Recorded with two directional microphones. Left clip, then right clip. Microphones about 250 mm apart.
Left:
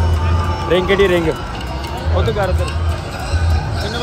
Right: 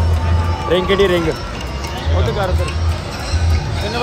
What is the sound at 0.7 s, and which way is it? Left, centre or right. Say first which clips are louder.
Speech: left 1 dB; centre.